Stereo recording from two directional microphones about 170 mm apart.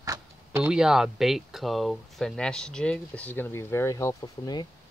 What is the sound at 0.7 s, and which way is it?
Speech, 5° right (ahead or behind).